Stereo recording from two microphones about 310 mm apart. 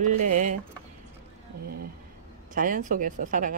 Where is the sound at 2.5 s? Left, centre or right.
Right.